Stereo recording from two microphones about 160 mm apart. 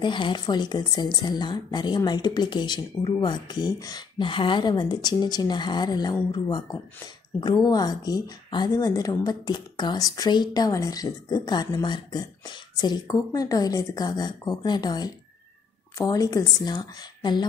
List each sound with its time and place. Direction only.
0.0 s speech: 30° left (ahead or behind)
7.3 s speech: 25° left (ahead or behind)